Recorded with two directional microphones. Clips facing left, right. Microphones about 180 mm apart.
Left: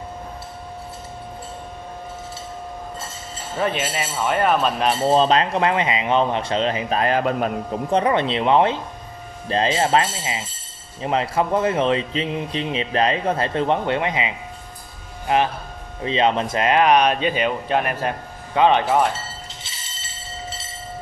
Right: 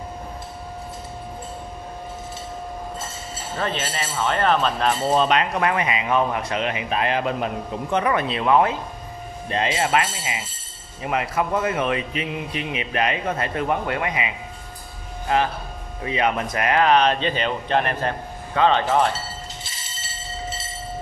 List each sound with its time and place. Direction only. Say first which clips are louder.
3.5 s speech: left 4 dB; 10° left (ahead or behind)
5.0 s speech: left 4 dB; 30° left (ahead or behind)
7.9 s speech: left 3 dB; 30° left (ahead or behind); by 19.0 s 15° left (ahead or behind)